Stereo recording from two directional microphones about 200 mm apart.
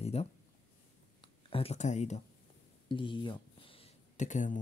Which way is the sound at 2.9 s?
25° left (ahead or behind).